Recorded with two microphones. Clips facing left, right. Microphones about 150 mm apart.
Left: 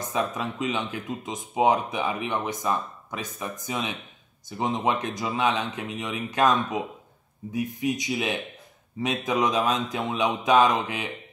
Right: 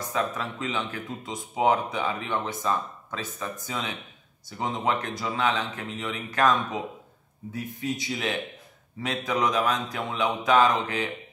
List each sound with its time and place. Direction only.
0.0 s speech: 20° left (ahead or behind)